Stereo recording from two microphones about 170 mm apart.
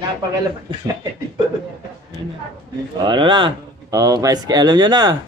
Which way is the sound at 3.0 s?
25° right (ahead or behind).